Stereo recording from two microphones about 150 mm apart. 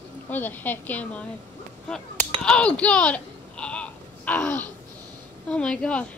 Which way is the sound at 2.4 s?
5° left (ahead or behind).